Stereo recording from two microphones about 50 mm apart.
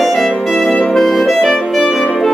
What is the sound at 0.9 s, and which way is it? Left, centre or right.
Clarinet, centre.